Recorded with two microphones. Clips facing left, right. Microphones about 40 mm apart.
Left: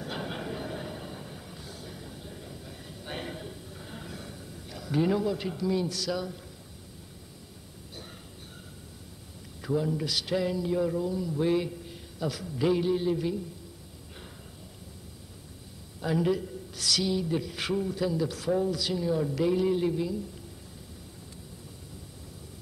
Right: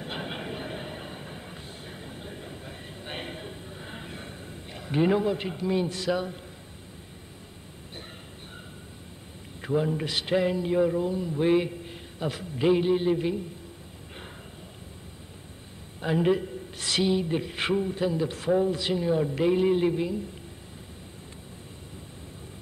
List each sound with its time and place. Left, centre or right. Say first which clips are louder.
0.0 s vehicle: right 1 dB; right
9.6 s a man's voice: right 2 dB; right
16.0 s a man's voice: right 3 dB; right